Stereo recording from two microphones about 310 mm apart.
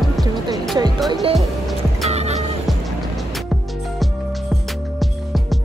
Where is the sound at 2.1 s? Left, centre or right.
Right.